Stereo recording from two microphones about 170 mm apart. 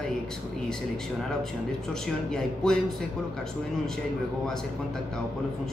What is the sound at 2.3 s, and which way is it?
Speech, 5° left (ahead or behind).